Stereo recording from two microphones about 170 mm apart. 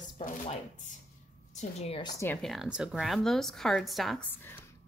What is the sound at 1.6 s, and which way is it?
Speech, 40° left (ahead or behind).